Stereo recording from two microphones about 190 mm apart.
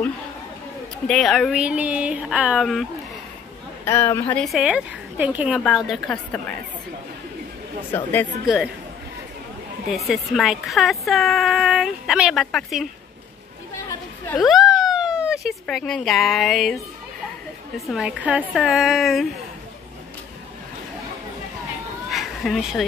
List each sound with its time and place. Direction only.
1.0 s a woman's voice: centre (ahead or behind)
3.8 s a woman's voice: 15° left (ahead or behind)
7.9 s speech: 10° left (ahead or behind)
9.9 s a woman's voice: centre (ahead or behind)
14.3 s a woman's voice: centre (ahead or behind)
22.1 s cat: centre (ahead or behind)